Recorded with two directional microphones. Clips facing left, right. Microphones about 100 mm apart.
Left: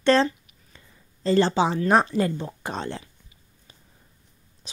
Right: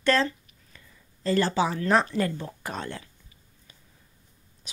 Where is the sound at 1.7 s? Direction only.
20° left (ahead or behind).